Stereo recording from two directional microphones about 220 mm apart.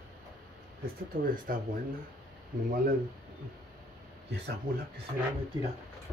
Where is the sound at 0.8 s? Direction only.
40° right (ahead or behind).